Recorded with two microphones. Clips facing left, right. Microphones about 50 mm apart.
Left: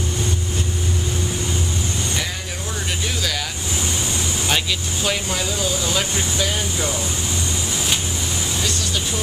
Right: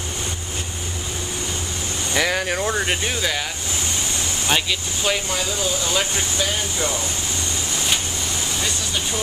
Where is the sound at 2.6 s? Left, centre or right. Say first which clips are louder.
Right 5 dB; right.